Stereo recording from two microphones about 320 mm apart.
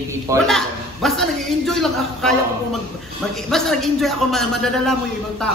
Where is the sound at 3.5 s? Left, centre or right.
Centre.